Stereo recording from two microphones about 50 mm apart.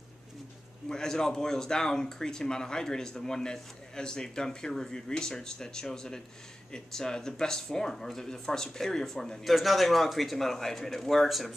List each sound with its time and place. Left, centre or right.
0.8 s speech: centre